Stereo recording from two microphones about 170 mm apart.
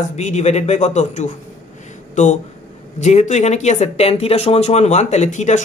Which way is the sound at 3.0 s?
45° left (ahead or behind).